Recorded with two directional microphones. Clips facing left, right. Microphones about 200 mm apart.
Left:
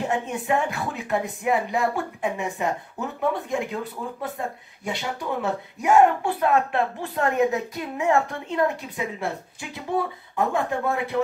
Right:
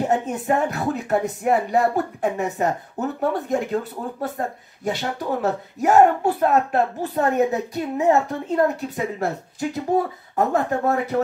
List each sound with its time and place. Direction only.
0.0 s speech: 40° right (ahead or behind)